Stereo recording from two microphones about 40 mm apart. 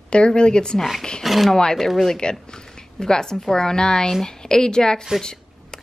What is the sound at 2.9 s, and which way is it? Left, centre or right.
A woman's voice, centre.